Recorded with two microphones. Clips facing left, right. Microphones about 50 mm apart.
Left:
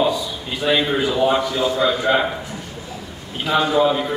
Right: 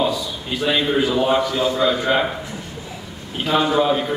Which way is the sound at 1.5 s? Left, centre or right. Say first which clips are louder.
Even; right.